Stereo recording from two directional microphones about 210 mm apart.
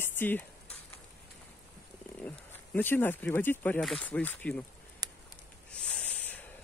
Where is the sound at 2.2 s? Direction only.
10° left (ahead or behind).